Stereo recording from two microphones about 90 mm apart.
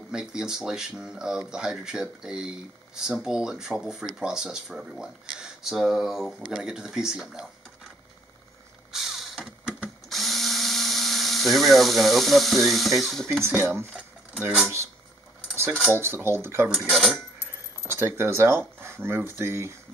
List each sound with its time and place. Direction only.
0.1 s speech: 5° right (ahead or behind)
8.9 s a sound: 5° right (ahead or behind)
10.0 s drill: centre (ahead or behind)
13.4 s speech: 25° right (ahead or behind)
15.9 s speech: 25° right (ahead or behind)
16.6 s speech: 10° right (ahead or behind)
17.9 s speech: 30° right (ahead or behind)